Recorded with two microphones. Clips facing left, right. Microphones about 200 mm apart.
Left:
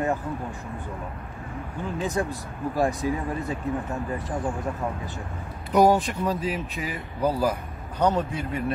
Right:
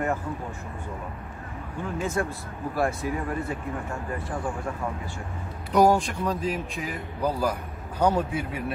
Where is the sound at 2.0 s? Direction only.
15° left (ahead or behind).